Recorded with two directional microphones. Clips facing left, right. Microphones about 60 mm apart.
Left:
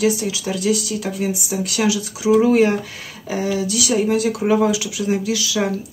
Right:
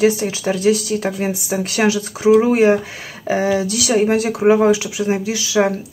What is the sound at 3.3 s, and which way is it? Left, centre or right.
Speech, right.